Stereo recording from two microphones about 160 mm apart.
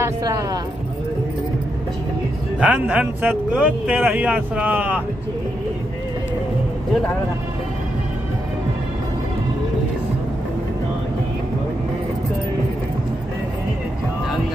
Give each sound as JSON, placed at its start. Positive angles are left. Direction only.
{"t": 0.0, "sound": "speech", "side_deg": -20}
{"t": 2.6, "sound": "a man's voice", "side_deg": -10}